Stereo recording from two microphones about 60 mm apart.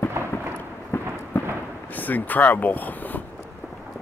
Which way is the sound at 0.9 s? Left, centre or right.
Left.